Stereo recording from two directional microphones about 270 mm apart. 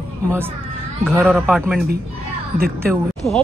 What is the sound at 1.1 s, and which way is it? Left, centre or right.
Speech, centre.